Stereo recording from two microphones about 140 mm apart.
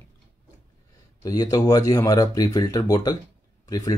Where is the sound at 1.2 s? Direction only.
25° left (ahead or behind).